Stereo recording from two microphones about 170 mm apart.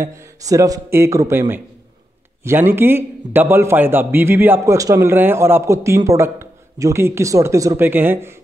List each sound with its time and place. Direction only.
0.0 s a man's voice: 15° right (ahead or behind)